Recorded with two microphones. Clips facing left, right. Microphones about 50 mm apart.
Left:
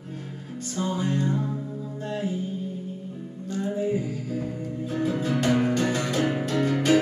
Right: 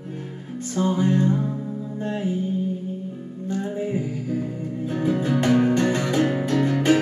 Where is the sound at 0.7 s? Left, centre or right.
Right.